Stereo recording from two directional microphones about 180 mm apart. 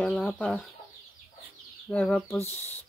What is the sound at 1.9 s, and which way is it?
Speech, 5° left (ahead or behind).